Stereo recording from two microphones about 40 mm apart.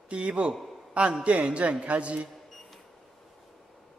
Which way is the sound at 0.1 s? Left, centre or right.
Right.